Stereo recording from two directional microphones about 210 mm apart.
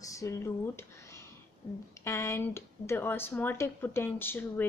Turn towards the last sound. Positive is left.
turn(degrees=10)  # may be behind; listen again after turning